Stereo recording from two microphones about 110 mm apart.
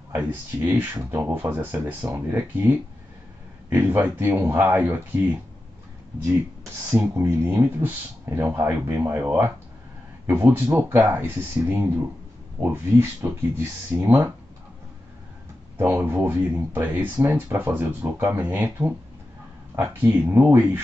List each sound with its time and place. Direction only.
0.1 s speech: 15° right (ahead or behind)
6.9 s speech: 25° right (ahead or behind)
15.8 s speech: 20° right (ahead or behind)